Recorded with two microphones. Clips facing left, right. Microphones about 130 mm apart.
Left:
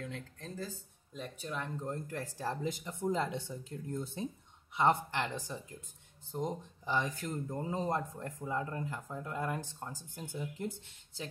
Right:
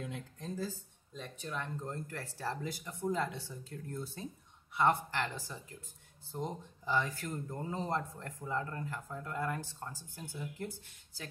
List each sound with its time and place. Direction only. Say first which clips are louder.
0.0 s speech: right 1 dB; 15° right (ahead or behind)
1.1 s speech: left 1 dB; 10° left (ahead or behind); by 11.2 s 25° left (ahead or behind)